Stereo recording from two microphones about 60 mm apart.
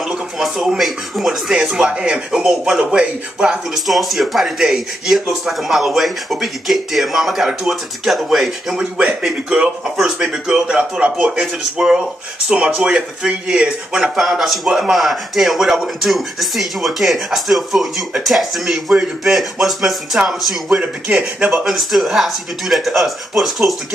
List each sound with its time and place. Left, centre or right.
0.0 s speech: centre
3.7 s speech: centre
10.2 s speech: centre
20.8 s speech: right
21.6 s speech: centre